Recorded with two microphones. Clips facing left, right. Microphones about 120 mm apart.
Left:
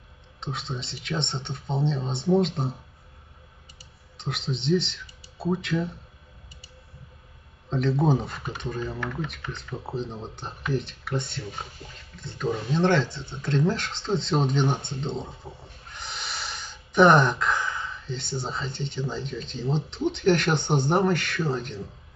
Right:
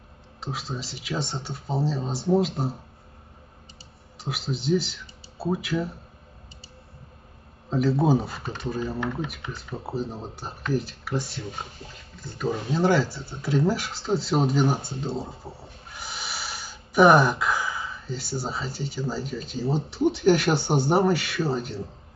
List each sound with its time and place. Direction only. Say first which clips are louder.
0.4 s speech: right 1 dB; 5° right (ahead or behind)
4.2 s speech: right 1 dB; 5° right (ahead or behind)
7.7 s speech: right 2 dB; 5° right (ahead or behind)
8.9 s speech: right 3 dB; 20° right (ahead or behind)
9.8 s speech: right 2 dB; 5° right (ahead or behind)